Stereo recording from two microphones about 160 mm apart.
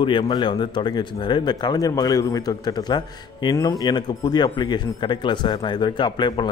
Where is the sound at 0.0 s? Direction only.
30° left (ahead or behind).